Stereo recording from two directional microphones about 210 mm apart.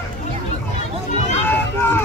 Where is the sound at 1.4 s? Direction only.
10° left (ahead or behind).